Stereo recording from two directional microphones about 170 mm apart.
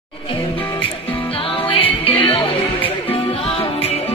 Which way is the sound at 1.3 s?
30° left (ahead or behind).